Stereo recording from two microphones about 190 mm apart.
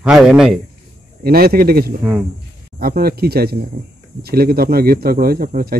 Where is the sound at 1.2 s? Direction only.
55° right (ahead or behind).